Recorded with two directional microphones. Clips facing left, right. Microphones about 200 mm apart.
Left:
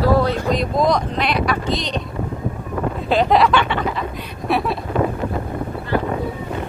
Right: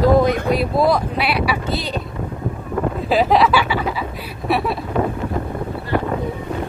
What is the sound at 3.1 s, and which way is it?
Speech, centre (ahead or behind).